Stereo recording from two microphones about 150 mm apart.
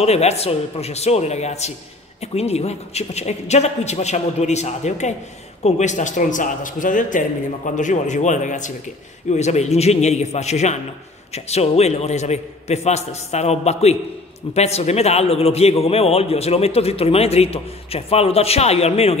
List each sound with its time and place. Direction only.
0.0 s a man's voice: 45° left (ahead or behind)